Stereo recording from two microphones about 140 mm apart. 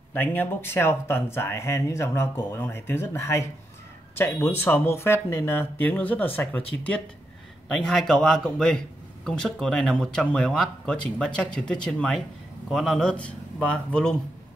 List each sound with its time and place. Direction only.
0.1 s speech: 15° left (ahead or behind)
7.6 s speech: 5° left (ahead or behind)